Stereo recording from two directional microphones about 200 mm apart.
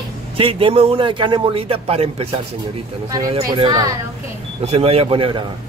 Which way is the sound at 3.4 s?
20° right (ahead or behind).